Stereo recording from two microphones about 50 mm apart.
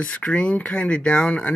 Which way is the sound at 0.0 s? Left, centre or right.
Left.